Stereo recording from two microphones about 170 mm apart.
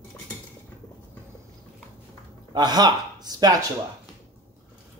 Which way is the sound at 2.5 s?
25° right (ahead or behind).